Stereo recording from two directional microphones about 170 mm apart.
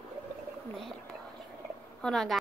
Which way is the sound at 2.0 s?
Centre (ahead or behind).